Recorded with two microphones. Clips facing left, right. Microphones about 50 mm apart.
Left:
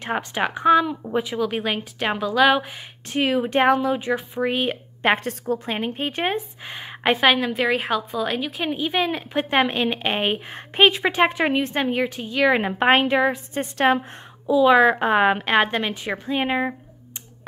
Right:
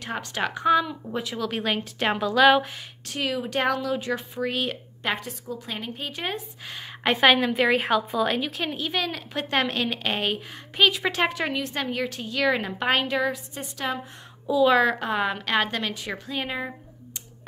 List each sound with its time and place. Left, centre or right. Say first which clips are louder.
0.0 s speech: left 5 dB; left; by 2.6 s centre
3.1 s a woman's voice: left 7 dB; left
5.0 s a woman's voice: left 8 dB; left
5.8 s a woman's voice: left 7 dB; left; by 7.2 s centre
7.2 s a woman's voice: right 2 dB; centre; by 13.4 s left
13.6 s a woman's voice: left 11 dB; left
14.4 s speech: left 4 dB; centre
15.0 s a woman's voice: left 8 dB; left